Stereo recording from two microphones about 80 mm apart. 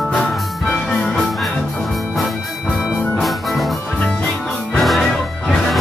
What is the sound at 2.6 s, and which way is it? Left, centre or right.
Music, centre.